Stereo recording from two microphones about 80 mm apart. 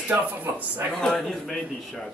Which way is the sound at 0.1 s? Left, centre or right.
Right.